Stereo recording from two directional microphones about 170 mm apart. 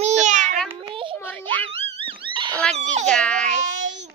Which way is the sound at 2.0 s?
30° right (ahead or behind).